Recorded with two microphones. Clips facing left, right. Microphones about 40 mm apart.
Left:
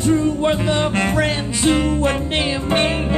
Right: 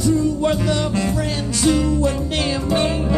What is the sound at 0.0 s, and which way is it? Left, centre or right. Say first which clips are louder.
Music: left 1 dB; left.